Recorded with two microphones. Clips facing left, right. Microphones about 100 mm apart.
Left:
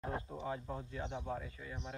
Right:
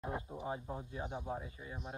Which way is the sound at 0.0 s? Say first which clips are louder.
Even; 20° right (ahead or behind).